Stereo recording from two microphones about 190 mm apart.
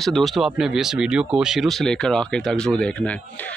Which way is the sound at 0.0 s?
Centre (ahead or behind).